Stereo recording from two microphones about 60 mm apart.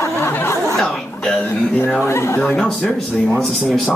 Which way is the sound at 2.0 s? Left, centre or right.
Left.